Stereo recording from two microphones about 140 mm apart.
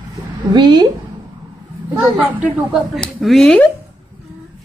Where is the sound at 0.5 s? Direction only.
30° right (ahead or behind).